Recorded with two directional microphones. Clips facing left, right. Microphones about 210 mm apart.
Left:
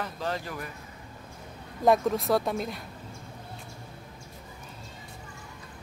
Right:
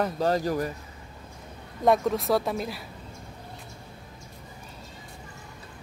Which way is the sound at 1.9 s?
Centre (ahead or behind).